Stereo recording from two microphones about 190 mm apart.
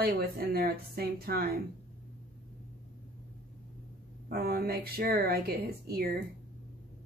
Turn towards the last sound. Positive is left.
turn(degrees=-55)  # may be behind; listen again after turning